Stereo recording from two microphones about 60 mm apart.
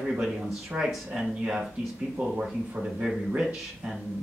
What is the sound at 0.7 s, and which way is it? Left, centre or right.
Speech, right.